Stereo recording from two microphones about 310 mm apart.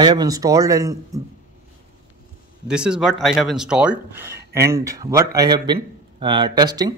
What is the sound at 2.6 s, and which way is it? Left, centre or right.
Speech, centre.